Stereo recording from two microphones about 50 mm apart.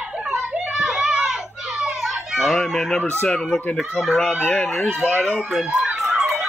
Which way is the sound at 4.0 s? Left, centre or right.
Centre.